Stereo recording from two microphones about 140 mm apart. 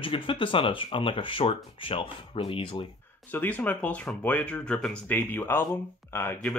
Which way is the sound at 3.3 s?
10° left (ahead or behind).